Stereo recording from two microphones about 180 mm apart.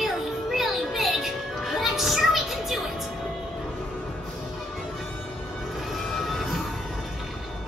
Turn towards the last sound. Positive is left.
turn(degrees=0)  # may be behind; listen again after turning